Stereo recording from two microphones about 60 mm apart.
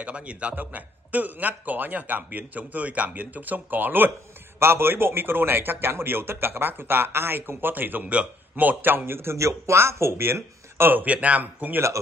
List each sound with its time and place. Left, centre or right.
0.0 s a man's voice: right